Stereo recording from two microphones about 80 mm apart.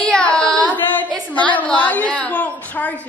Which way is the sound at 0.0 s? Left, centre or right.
Centre.